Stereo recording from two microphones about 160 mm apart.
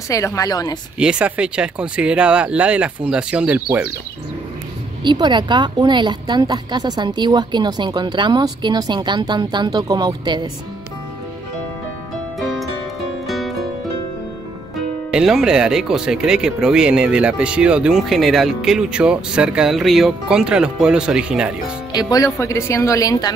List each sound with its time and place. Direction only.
0.1 s speech: 20° left (ahead or behind)
0.9 s speech: 5° right (ahead or behind)
5.0 s a woman's voice: 30° right (ahead or behind)
12.4 s music: centre (ahead or behind)
15.0 s speech: 5° right (ahead or behind)
21.9 s speech: 20° left (ahead or behind)